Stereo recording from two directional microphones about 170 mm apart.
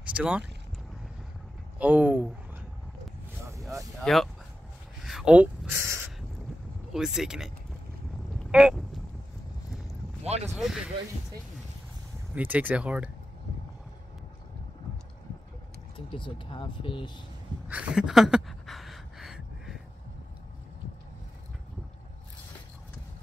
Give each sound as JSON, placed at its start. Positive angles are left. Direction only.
{"t": 0.1, "sound": "speech", "side_deg": -5}
{"t": 1.8, "sound": "speech", "side_deg": -10}
{"t": 4.0, "sound": "speech", "side_deg": 0}
{"t": 5.0, "sound": "a sound", "side_deg": -5}
{"t": 6.9, "sound": "speech", "side_deg": -5}
{"t": 10.2, "sound": "speech", "side_deg": -40}
{"t": 10.5, "sound": "speech", "side_deg": 0}
{"t": 12.4, "sound": "speech", "side_deg": -10}
{"t": 16.1, "sound": "speech", "side_deg": 30}
{"t": 17.6, "sound": "a sound", "side_deg": -5}